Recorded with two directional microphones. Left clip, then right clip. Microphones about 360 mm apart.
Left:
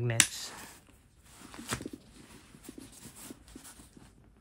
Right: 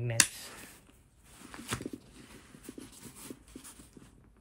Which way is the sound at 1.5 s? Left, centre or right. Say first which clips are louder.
Even; centre.